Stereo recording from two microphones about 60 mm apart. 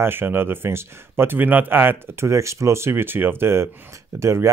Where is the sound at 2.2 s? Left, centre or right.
Right.